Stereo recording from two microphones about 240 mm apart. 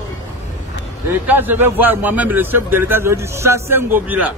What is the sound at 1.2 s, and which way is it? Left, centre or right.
A man's voice, centre.